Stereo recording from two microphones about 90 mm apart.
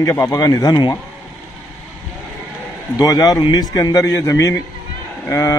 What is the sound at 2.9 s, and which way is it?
A man's voice, 45° left (ahead or behind).